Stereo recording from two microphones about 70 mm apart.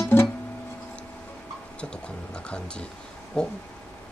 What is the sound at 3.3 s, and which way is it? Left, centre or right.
Speech, centre.